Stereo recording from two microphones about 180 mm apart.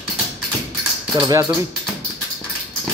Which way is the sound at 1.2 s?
15° right (ahead or behind).